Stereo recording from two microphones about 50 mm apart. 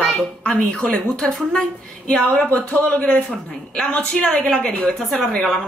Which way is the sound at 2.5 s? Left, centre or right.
Left.